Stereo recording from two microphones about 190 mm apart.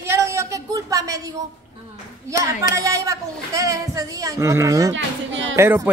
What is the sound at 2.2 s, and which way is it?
A woman's voice, 15° right (ahead or behind).